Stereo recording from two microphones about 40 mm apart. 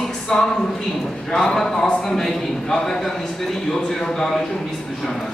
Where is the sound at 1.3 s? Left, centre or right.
Left.